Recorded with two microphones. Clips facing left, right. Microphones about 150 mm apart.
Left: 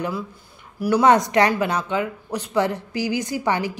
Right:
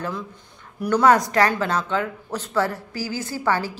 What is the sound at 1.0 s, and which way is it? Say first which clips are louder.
Speech: left 1 dB; 20° left (ahead or behind).